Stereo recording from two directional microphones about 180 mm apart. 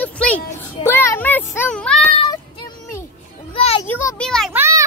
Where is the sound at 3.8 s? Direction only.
10° left (ahead or behind).